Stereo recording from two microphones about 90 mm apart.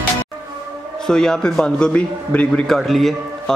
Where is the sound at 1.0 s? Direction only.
5° left (ahead or behind).